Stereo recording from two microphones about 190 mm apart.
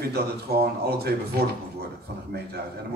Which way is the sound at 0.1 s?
55° right (ahead or behind).